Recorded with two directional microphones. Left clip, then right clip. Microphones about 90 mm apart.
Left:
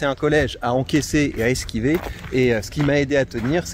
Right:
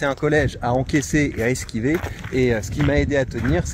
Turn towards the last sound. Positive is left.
turn(degrees=30)  # may be behind; listen again after turning